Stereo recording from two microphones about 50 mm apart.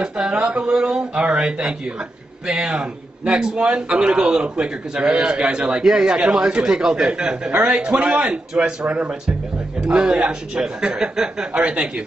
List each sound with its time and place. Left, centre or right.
0.0 s a man's voice: centre
11.5 s speech: right